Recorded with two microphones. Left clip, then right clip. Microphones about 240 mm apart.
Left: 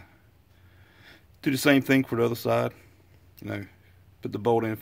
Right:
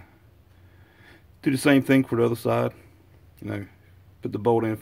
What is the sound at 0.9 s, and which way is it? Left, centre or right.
Speech, centre.